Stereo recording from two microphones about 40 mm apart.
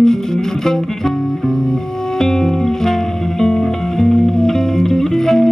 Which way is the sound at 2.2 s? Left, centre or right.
Centre.